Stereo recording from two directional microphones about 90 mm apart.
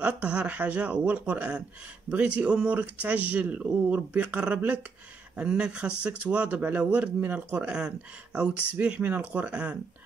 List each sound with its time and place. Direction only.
0.0 s speech: 15° right (ahead or behind)